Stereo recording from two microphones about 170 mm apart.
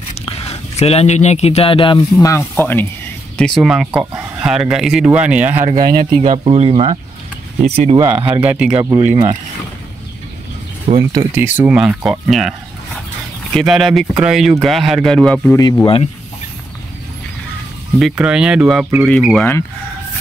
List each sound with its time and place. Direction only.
0.1 s speech: 35° left (ahead or behind)
2.2 s speech: 15° left (ahead or behind); by 5.7 s 10° right (ahead or behind)
6.2 s speech: 35° right (ahead or behind)
8.3 s speech: 10° right (ahead or behind)
11.0 s speech: 20° right (ahead or behind)
11.4 s speech: 10° right (ahead or behind)
15.5 s speech: 20° left (ahead or behind)
17.9 s speech: 5° right (ahead or behind)